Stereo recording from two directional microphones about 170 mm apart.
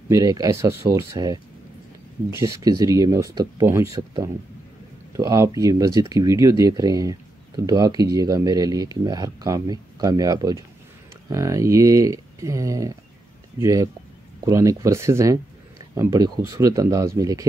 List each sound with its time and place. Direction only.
0.1 s speech: 20° right (ahead or behind)